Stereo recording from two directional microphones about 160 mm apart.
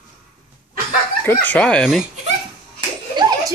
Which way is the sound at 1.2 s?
10° left (ahead or behind).